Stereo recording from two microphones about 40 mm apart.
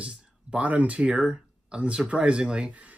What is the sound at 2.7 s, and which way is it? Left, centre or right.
Speech, right.